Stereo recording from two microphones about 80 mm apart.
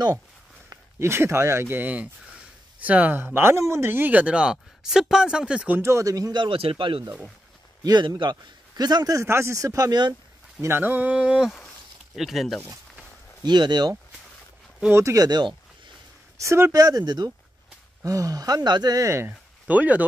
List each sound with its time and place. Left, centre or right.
0.7 s speech: right
3.3 s speech: right; by 5.8 s centre
5.8 s speech: right
6.3 s speech: right
7.8 s a man's voice: right
9.2 s speech: right
10.8 s speech: right; by 13.0 s centre
13.4 s speech: right
15.1 s speech: right
16.3 s speech: right
16.7 s speech: right
18.0 s speech: right
18.9 s speech: right
19.7 s speech: centre